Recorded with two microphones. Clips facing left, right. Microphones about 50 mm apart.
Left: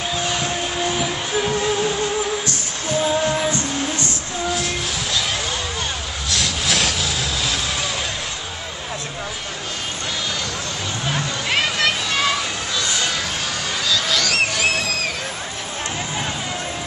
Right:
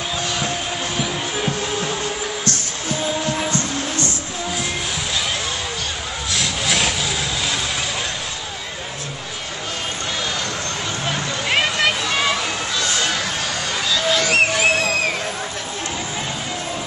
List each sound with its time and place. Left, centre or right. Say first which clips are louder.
6.3 s rub: even; centre
11.1 s music: even; centre
13.8 s a sound: right 2 dB; right